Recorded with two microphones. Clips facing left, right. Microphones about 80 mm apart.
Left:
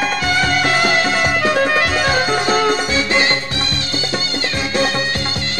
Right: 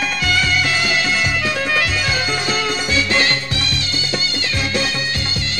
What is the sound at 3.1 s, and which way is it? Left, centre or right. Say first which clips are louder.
Music: left 2 dB; left.